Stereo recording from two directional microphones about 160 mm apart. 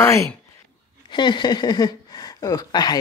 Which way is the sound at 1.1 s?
30° left (ahead or behind).